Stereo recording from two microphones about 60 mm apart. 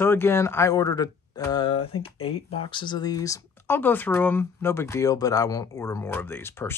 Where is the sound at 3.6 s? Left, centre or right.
Left.